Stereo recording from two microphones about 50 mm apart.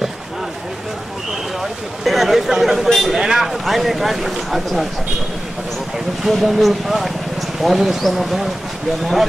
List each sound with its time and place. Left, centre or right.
1.6 s speech: centre
6.2 s speech: centre